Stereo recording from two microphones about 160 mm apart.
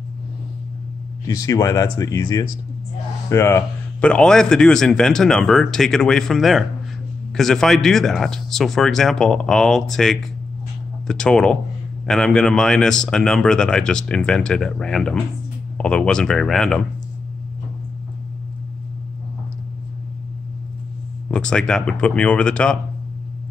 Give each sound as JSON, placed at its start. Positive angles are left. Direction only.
{"t": 1.2, "sound": "a man's voice", "side_deg": 20}
{"t": 21.3, "sound": "a man's voice", "side_deg": 5}